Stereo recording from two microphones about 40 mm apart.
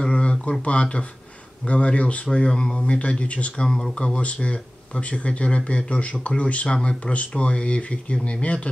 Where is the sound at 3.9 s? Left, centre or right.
Left.